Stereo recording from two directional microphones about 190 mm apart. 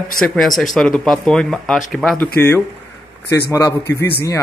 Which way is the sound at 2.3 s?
10° left (ahead or behind).